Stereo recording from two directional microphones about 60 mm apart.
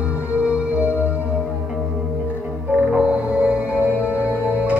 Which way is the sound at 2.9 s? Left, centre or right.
Centre.